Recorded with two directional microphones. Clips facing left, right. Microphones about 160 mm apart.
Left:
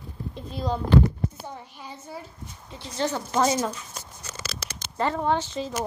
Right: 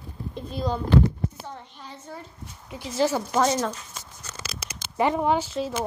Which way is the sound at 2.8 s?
5° right (ahead or behind).